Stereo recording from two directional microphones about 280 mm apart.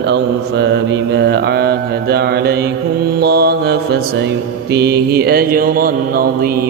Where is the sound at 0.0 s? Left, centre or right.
Right.